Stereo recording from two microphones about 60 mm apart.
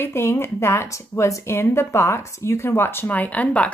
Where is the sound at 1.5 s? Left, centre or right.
Left.